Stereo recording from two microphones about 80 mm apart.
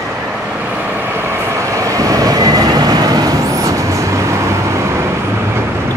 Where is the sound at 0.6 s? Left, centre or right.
Right.